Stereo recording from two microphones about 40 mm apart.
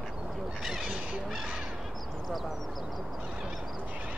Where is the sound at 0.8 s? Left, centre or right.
Right.